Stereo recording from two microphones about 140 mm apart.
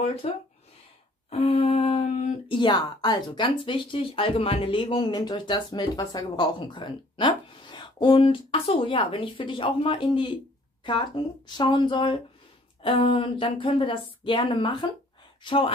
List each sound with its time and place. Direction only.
0.0 s speech: 45° left (ahead or behind)
1.3 s speech: 50° left (ahead or behind)